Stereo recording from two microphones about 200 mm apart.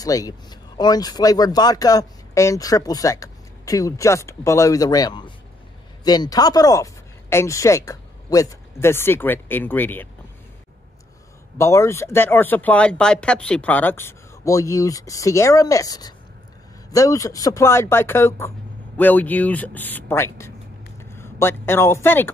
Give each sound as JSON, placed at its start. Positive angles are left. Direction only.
{"t": 0.0, "sound": "speech", "side_deg": 20}
{"t": 11.5, "sound": "speech", "side_deg": 15}